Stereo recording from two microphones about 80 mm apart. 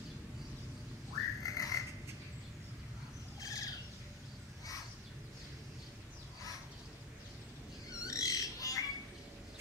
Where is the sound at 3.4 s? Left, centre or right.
Left.